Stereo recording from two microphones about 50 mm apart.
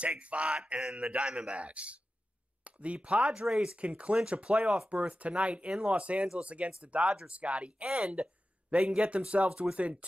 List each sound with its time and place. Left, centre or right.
0.0 s speech: right